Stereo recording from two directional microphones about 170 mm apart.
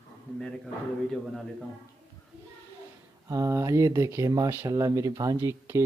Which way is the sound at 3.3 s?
20° right (ahead or behind).